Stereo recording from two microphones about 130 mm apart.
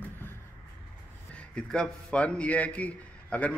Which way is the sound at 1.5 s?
5° left (ahead or behind).